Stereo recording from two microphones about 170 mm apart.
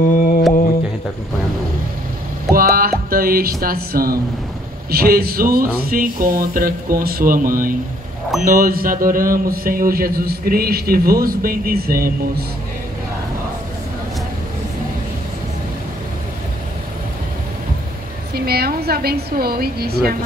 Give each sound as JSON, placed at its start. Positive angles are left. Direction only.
{"t": 0.1, "sound": "music", "side_deg": 50}
{"t": 2.5, "sound": "music", "side_deg": -60}
{"t": 3.6, "sound": "speech", "side_deg": -60}
{"t": 18.3, "sound": "speech", "side_deg": -70}